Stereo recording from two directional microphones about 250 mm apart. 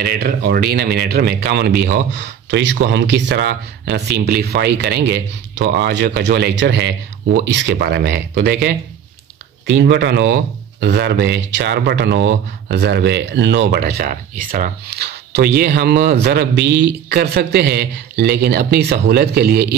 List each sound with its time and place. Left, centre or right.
0.0 s a man's voice: right